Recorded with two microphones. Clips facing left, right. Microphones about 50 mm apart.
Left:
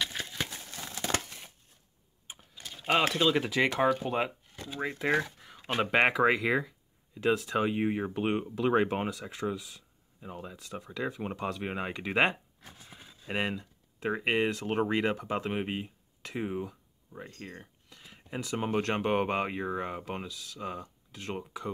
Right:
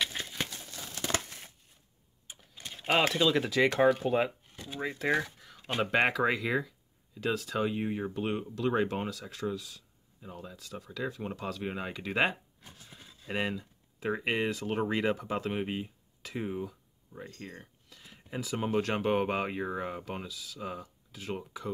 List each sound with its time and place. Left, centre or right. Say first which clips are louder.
2.7 s mechanisms: left 1 dB; centre
3.2 s speech: even; centre
4.7 s speech: left 1 dB; centre
9.1 s speech: left 1 dB; centre
16.6 s a sound: right 1 dB; centre
18.7 s speech: even; centre